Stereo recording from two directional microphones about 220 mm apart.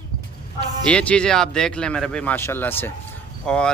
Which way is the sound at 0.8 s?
5° left (ahead or behind).